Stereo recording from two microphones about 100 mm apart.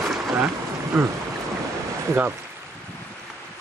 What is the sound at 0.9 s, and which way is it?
Speech, 20° right (ahead or behind).